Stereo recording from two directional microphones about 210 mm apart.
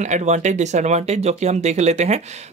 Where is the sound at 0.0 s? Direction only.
35° right (ahead or behind).